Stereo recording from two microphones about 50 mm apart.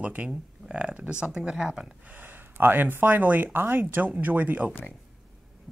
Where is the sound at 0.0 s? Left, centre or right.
Right; by 1.9 s centre.